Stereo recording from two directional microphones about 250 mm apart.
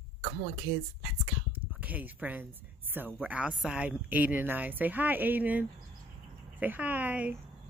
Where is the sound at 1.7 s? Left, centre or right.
Centre.